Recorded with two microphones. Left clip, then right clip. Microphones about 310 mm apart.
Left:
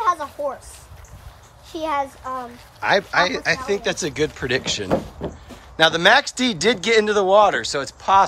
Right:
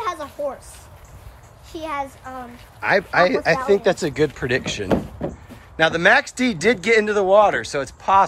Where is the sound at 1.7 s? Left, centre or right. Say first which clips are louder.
Left 4 dB; centre.